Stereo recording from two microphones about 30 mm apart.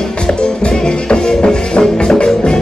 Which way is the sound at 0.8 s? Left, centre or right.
Left.